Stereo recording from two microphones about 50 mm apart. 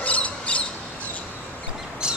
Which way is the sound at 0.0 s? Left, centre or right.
Left.